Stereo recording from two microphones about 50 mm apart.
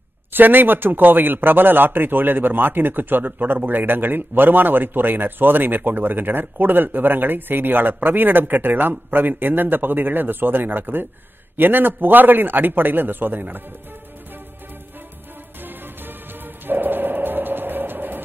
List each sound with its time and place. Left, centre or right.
0.3 s speech: right
16.6 s bow-wow: right